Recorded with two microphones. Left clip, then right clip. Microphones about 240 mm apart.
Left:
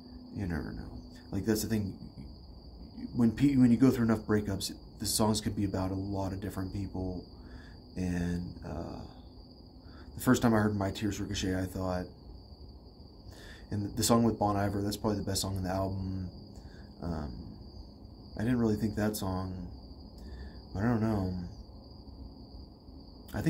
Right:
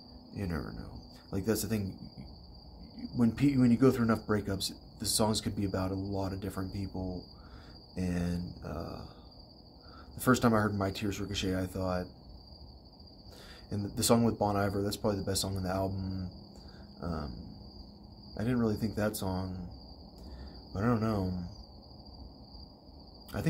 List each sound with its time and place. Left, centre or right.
0.3 s speech: centre
10.1 s speech: centre
13.7 s speech: centre
18.3 s speech: centre
20.7 s speech: centre
23.3 s speech: centre